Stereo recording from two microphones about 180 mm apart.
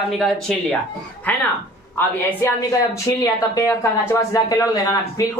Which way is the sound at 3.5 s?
15° left (ahead or behind).